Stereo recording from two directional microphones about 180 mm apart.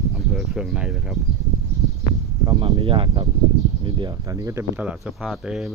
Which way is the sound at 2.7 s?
30° right (ahead or behind).